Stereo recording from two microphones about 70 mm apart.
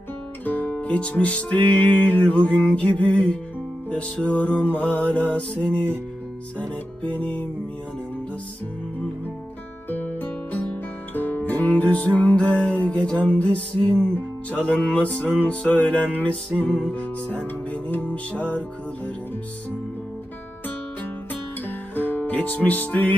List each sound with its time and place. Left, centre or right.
0.5 s music: left
9.8 s music: left
22.1 s music: left